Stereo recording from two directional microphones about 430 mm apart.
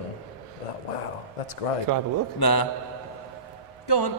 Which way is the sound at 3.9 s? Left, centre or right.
Left.